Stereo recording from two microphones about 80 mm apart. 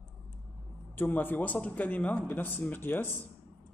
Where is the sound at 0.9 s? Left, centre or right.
Left.